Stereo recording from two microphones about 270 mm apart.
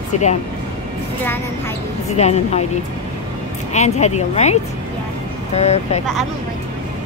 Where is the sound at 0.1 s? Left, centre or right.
Left.